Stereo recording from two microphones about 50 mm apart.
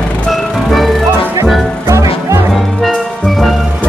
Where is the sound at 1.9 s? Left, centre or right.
Right.